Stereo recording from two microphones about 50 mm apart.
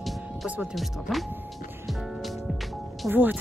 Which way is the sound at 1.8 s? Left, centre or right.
Centre.